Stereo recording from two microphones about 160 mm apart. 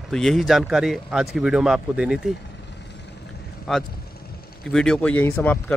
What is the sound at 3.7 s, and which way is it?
Speech, 5° left (ahead or behind).